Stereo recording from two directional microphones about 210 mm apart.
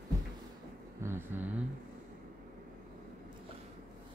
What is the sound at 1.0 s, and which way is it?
Vehicle, 10° right (ahead or behind).